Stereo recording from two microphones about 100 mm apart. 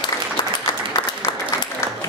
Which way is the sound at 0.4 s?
50° left (ahead or behind).